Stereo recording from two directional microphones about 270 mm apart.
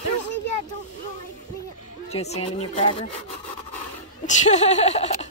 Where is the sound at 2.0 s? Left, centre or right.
Left.